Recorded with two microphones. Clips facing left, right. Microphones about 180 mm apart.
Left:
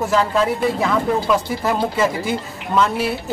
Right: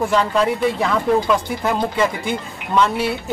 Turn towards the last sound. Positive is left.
turn(degrees=0)  # may be behind; listen again after turning